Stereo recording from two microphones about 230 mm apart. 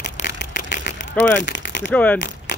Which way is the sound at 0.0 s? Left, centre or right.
Left.